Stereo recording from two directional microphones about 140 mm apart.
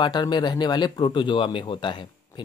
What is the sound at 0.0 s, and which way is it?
Speech, 30° left (ahead or behind).